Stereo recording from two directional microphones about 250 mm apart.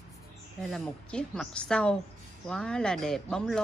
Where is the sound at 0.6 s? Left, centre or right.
Centre.